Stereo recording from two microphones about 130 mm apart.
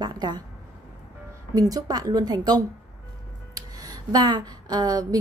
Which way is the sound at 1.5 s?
30° right (ahead or behind).